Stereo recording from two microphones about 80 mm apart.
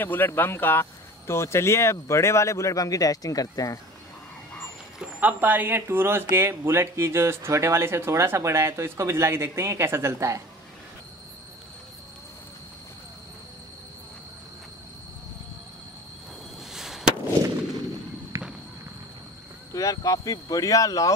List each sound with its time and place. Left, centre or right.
0.0 s speech: left
5.2 s speech: right
16.7 s fireworks: centre
18.3 s walk: right
19.7 s speech: left